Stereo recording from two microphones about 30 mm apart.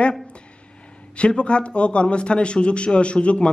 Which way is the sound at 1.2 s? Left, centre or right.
Left.